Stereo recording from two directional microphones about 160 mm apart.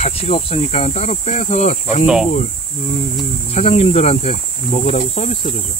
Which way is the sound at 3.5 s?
40° left (ahead or behind).